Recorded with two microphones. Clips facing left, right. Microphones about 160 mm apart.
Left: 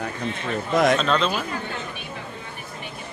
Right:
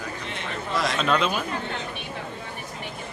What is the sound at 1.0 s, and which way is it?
Speech, 10° right (ahead or behind).